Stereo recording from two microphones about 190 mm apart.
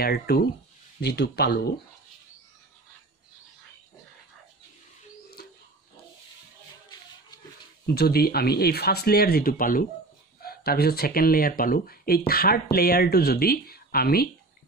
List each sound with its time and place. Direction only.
0.0 s speech: 55° left (ahead or behind)
5.4 s dog: 55° left (ahead or behind)
7.8 s speech: 55° left (ahead or behind)